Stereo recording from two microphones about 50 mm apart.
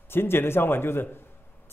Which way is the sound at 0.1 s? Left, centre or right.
Left.